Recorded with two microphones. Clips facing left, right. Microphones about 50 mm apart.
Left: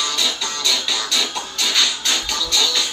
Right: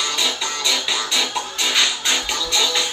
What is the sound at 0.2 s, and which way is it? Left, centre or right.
Music, centre.